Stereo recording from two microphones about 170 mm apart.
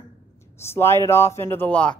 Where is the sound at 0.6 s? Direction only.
15° left (ahead or behind).